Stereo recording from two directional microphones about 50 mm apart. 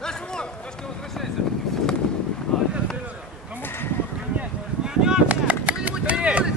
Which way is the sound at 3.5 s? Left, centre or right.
Left.